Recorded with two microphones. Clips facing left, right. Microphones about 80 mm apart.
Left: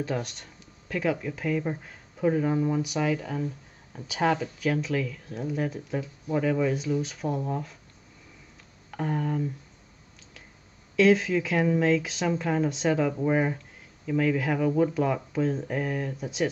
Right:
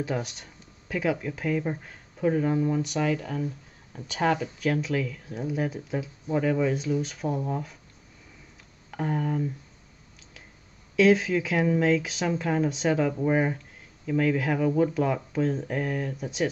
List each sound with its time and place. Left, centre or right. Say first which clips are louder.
0.0 s speech: even; centre
8.9 s speech: right 1 dB; centre
11.0 s speech: even; centre